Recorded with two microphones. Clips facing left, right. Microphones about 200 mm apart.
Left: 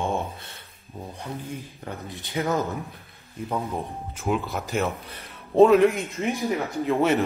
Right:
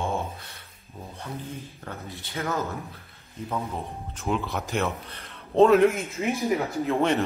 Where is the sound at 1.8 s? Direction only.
15° left (ahead or behind).